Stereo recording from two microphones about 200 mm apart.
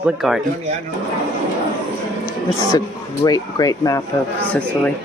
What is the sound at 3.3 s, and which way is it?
Speech, 20° left (ahead or behind).